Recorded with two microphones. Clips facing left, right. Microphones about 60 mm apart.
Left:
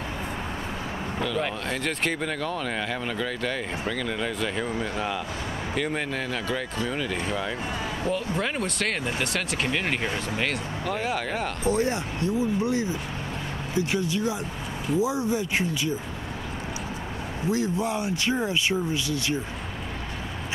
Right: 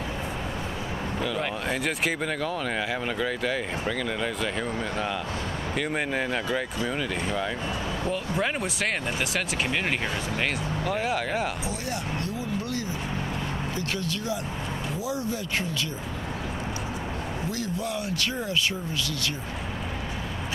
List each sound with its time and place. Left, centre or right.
1.2 s speech: centre
5.8 s speech: centre
11.6 s speech: left; by 15.9 s centre
17.5 s speech: left